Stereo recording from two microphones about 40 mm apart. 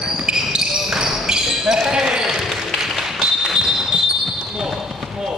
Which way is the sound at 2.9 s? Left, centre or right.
Centre.